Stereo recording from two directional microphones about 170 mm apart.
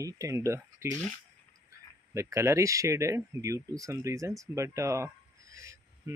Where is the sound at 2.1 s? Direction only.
15° right (ahead or behind).